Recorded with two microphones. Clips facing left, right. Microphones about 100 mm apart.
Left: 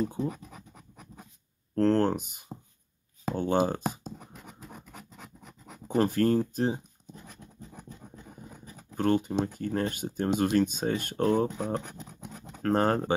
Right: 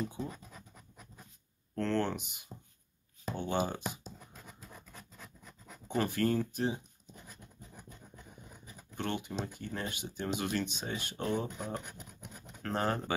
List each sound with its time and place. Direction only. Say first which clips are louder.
0.1 s speech: left 8 dB; 55° left (ahead or behind)
1.8 s speech: left 8 dB; 40° left (ahead or behind)
5.4 s speech: left 5 dB; 35° left (ahead or behind)
8.9 s speech: left 11 dB; 40° left (ahead or behind)
11.4 s speech: left 8 dB; 35° left (ahead or behind)
12.6 s speech: left 8 dB; 45° left (ahead or behind)